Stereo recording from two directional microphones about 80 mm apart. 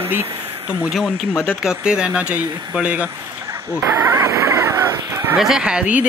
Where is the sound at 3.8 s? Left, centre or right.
Right.